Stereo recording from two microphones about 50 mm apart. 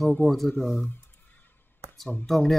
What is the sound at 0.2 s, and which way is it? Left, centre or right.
Speech, left.